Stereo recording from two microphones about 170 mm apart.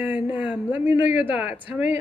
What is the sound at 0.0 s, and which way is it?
Speech, 10° right (ahead or behind).